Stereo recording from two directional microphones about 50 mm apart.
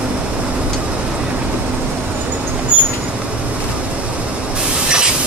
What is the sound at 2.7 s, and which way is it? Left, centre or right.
Vehicle, right.